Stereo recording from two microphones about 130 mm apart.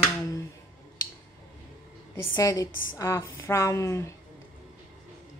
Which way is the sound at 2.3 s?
25° left (ahead or behind).